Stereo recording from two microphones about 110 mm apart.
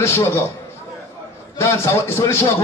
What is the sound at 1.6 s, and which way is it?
A man's voice, 25° left (ahead or behind).